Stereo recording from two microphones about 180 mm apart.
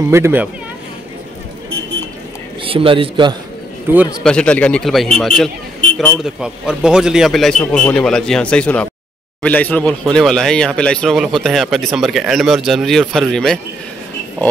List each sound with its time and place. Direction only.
0.1 s speech: 10° right (ahead or behind)
2.6 s speech: 30° right (ahead or behind)
4.2 s speech: 5° left (ahead or behind)